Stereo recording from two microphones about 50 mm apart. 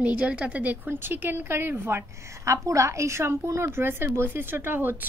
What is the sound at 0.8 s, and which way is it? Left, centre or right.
A woman's voice, right.